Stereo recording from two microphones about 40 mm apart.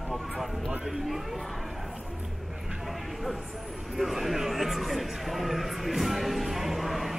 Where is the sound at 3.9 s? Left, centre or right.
Centre.